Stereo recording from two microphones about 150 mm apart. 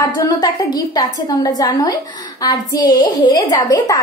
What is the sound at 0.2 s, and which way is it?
A woman's voice, 25° left (ahead or behind).